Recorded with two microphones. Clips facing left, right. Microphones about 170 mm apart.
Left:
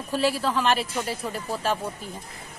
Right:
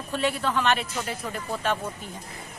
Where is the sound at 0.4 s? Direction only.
30° left (ahead or behind).